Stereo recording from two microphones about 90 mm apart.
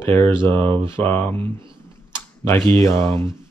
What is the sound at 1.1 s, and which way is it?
Speech, 25° left (ahead or behind).